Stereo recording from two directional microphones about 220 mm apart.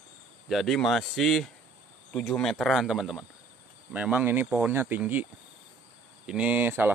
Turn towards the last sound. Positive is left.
turn(degrees=-10)  # may be behind; listen again after turning